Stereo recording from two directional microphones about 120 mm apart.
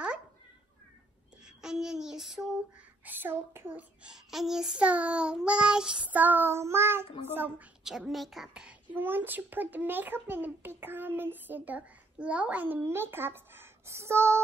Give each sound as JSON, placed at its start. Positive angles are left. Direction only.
{"t": 1.4, "sound": "child singing", "side_deg": -5}
{"t": 3.1, "sound": "speech", "side_deg": -15}
{"t": 7.8, "sound": "speech", "side_deg": -5}